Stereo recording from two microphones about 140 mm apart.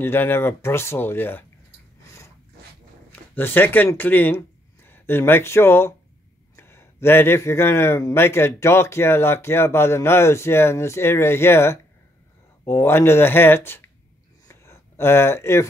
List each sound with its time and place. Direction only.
0.0 s speech: 15° left (ahead or behind)
2.0 s snort: 20° left (ahead or behind)
3.1 s speech: 15° left (ahead or behind)
14.5 s a sound: 20° left (ahead or behind)